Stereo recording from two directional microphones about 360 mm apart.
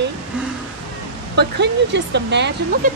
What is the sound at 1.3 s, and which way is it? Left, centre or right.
Speech, right.